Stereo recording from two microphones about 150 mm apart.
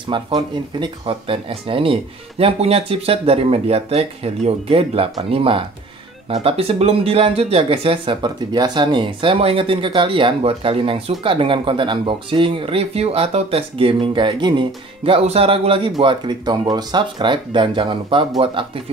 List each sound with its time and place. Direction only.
0.1 s speech: 30° right (ahead or behind)